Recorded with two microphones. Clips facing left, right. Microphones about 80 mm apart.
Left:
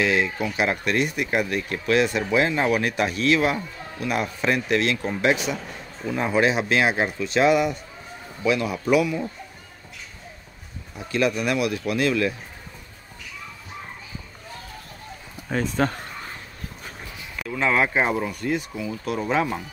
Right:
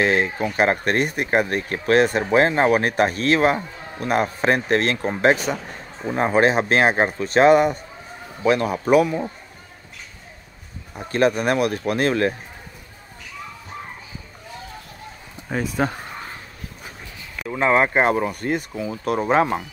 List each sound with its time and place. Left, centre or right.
0.0 s a man's voice: right
11.0 s speech: right
15.4 s speech: centre
17.5 s speech: right
17.9 s speech: right